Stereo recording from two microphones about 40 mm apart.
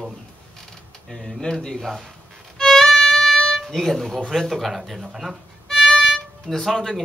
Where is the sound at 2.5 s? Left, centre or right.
Centre.